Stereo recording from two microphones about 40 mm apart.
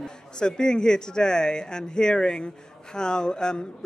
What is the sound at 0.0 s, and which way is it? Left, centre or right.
A man's voice, centre.